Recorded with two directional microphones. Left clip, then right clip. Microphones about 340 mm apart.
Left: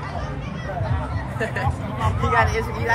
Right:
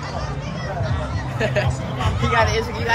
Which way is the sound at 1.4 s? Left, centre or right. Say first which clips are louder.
Right 4 dB; right.